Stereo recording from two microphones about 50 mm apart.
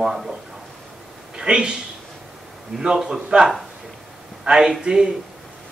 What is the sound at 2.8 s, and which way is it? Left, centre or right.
Speech, centre.